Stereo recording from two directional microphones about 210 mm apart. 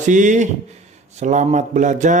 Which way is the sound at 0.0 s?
35° right (ahead or behind).